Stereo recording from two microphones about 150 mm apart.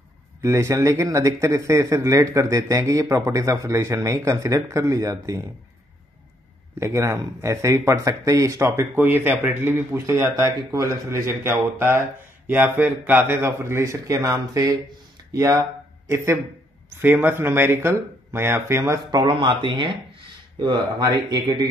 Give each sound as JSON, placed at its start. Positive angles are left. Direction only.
{"t": 0.4, "sound": "speech", "side_deg": -20}
{"t": 6.8, "sound": "speech", "side_deg": -20}
{"t": 16.9, "sound": "speech", "side_deg": -15}
{"t": 19.0, "sound": "speech", "side_deg": -30}